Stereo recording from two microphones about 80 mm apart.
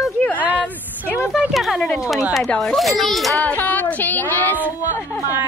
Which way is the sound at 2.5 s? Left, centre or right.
Centre.